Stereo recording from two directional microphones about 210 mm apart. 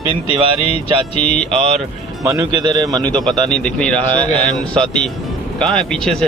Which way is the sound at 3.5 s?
5° left (ahead or behind).